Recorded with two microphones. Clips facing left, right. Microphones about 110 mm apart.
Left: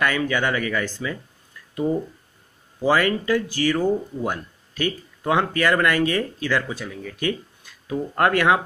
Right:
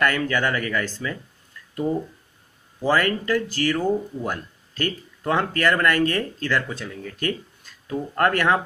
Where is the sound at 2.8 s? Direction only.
15° left (ahead or behind).